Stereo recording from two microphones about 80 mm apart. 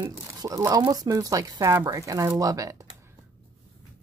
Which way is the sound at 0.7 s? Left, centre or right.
Right.